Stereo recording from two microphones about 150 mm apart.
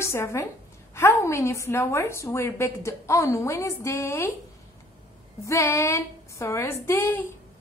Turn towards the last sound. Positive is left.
turn(degrees=15)  # may be behind; listen again after turning